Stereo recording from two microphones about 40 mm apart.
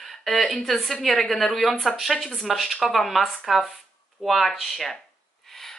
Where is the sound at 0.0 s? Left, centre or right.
Centre.